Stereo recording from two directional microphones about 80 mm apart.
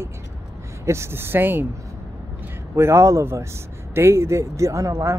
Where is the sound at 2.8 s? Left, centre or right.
Right.